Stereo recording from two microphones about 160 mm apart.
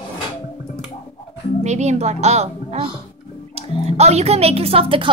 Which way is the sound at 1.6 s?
45° right (ahead or behind).